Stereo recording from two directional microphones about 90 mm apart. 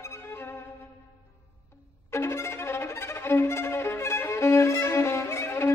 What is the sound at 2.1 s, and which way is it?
Violin, 30° left (ahead or behind).